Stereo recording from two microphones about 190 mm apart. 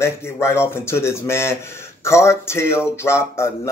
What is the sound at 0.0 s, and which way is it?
A man's voice, 15° left (ahead or behind).